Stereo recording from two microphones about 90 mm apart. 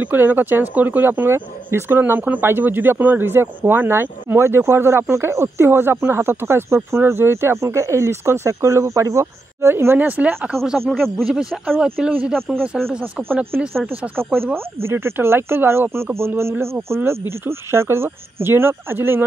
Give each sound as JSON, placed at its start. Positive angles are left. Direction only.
{"t": 0.0, "sound": "speech", "side_deg": -20}
{"t": 10.0, "sound": "speech", "side_deg": -15}
{"t": 10.5, "sound": "speech", "side_deg": 0}
{"t": 12.1, "sound": "speech", "side_deg": -15}
{"t": 12.8, "sound": "speech", "side_deg": 5}
{"t": 13.3, "sound": "speech", "side_deg": -25}